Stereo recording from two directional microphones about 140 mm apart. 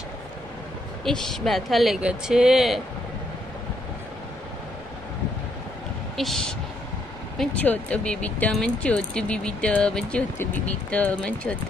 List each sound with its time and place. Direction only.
1.0 s speech: 5° left (ahead or behind)
7.3 s speech: 10° left (ahead or behind)